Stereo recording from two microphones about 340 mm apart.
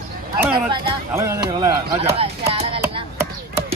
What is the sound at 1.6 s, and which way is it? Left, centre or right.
Chopping, centre.